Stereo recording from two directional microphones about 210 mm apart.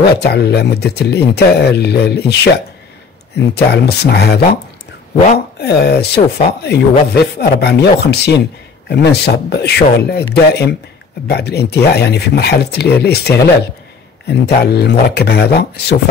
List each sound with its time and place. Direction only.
0.0 s speech: 50° left (ahead or behind)
5.6 s speech: 50° left (ahead or behind)
11.2 s speech: 50° left (ahead or behind)